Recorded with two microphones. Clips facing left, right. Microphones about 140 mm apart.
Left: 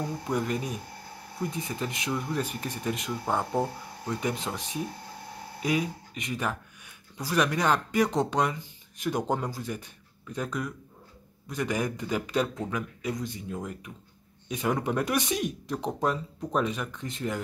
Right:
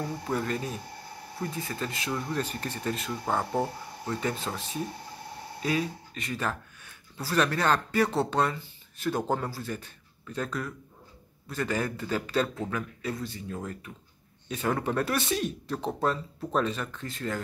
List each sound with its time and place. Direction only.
0.3 s speech: 15° left (ahead or behind)
3.3 s speech: centre (ahead or behind)
4.1 s speech: 15° left (ahead or behind)